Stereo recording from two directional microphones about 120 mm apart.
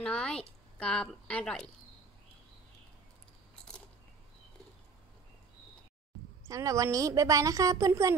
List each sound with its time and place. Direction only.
0.0 s speech: 10° left (ahead or behind)
6.4 s a woman's voice: 25° right (ahead or behind)